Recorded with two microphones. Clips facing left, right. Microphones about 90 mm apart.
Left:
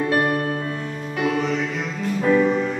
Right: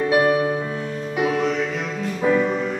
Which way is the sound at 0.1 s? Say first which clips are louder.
Right 6 dB; 5° right (ahead or behind).